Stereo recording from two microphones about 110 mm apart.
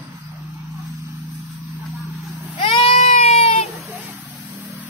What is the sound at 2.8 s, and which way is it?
Baby cry, 80° left.